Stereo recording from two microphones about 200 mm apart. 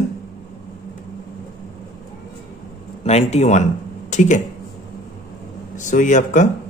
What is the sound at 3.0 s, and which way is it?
A man's voice, 35° left (ahead or behind).